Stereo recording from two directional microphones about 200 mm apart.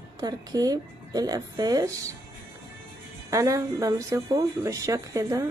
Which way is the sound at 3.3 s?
15° right (ahead or behind).